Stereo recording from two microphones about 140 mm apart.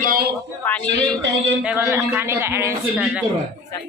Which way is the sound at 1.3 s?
10° right (ahead or behind).